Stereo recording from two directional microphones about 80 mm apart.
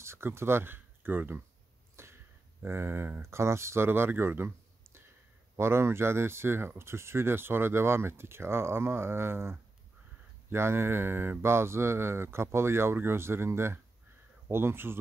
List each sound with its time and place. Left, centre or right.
0.0 s speech: right